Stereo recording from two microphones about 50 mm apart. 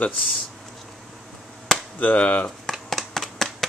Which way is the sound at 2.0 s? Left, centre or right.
Left.